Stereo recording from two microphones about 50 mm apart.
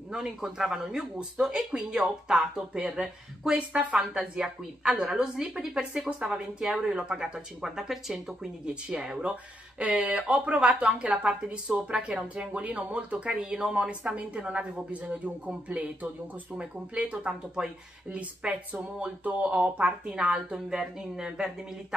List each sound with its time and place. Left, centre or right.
0.1 s speech: centre
3.5 s a woman's voice: right; by 8.5 s centre
8.6 s a woman's voice: centre
13.5 s a woman's voice: centre; by 19.9 s right
20.1 s speech: centre